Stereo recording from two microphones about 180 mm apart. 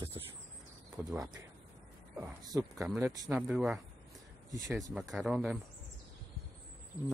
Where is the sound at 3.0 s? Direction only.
15° right (ahead or behind).